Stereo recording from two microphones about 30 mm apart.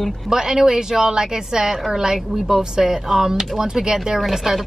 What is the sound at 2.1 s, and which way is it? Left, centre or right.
Speech, centre.